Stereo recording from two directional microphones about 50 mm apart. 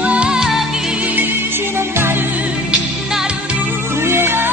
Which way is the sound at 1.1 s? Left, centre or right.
Right.